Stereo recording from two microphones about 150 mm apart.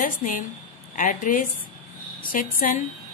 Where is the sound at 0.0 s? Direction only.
65° left (ahead or behind).